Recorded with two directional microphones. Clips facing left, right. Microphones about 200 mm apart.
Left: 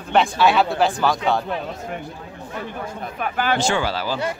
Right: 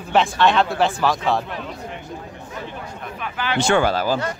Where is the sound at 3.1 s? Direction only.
50° left (ahead or behind).